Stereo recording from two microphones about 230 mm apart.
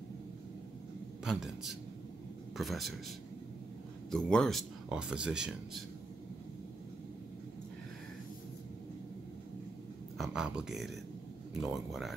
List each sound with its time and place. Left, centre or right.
1.2 s speech: centre
4.1 s speech: centre
10.1 s speech: centre